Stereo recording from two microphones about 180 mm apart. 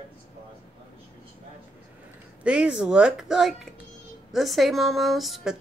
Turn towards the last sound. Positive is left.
turn(degrees=0)  # may be behind; listen again after turning